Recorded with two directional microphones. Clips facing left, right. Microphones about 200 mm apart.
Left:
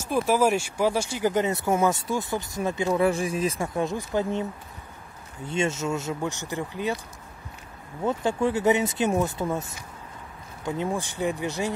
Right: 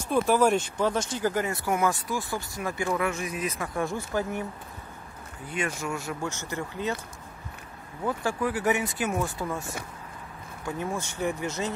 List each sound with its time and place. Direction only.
0.1 s speech: 5° left (ahead or behind); by 4.5 s 20° left (ahead or behind)
5.5 s speech: 25° left (ahead or behind)
8.0 s speech: 25° left (ahead or behind)